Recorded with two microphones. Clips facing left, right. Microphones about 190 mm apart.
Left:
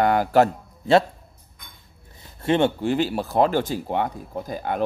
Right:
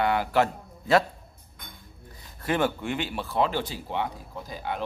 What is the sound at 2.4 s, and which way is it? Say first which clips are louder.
Speech: left 6 dB; 25° left (ahead or behind).